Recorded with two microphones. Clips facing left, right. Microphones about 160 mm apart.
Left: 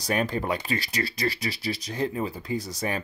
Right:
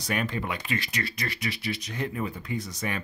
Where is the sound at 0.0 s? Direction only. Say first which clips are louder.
Left 3 dB; 35° left (ahead or behind).